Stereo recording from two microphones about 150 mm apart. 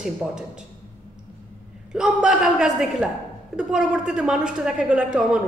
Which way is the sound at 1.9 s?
5° right (ahead or behind).